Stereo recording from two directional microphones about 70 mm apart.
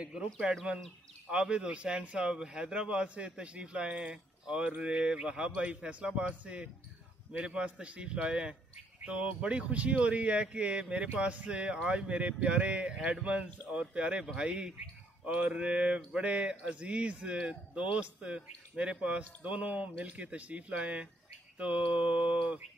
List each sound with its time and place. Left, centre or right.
0.0 s speech: centre
1.3 s speech: centre